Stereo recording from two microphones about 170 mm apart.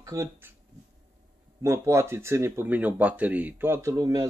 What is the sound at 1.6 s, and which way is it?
Speech, 15° right (ahead or behind).